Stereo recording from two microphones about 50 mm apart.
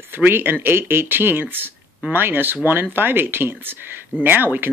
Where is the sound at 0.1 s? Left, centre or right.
Right.